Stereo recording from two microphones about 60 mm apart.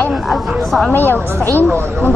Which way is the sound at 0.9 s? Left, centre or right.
Left.